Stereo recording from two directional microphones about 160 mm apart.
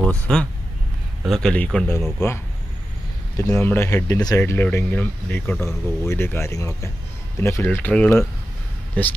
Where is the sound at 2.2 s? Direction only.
15° left (ahead or behind).